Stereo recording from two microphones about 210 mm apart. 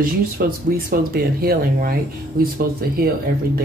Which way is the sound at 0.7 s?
45° right (ahead or behind).